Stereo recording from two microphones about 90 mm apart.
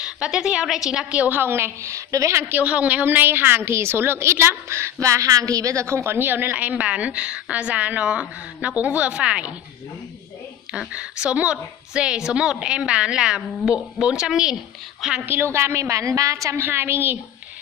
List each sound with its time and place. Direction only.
0.0 s a woman's voice: 10° right (ahead or behind); by 2.4 s 35° right (ahead or behind)
2.5 s a woman's voice: 15° right (ahead or behind)
10.7 s a woman's voice: 10° right (ahead or behind)
15.2 s a woman's voice: 25° right (ahead or behind)
16.6 s a woman's voice: 25° right (ahead or behind)